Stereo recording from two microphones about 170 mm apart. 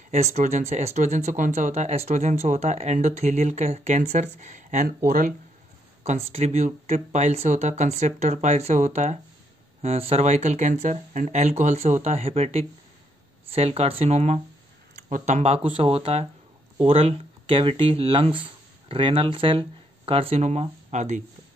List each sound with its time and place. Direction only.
0.1 s speech: 40° right (ahead or behind)
6.0 s speech: 35° right (ahead or behind)